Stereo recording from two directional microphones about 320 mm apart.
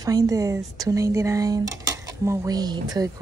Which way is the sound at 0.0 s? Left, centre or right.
Centre.